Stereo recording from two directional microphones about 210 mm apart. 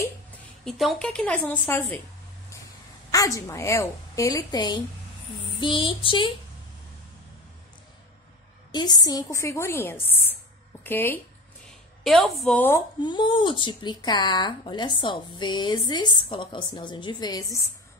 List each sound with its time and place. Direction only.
0.7 s a woman's voice: centre (ahead or behind)
3.1 s a woman's voice: 15° left (ahead or behind)
8.7 s a woman's voice: 20° left (ahead or behind)
13.0 s speech: 20° left (ahead or behind)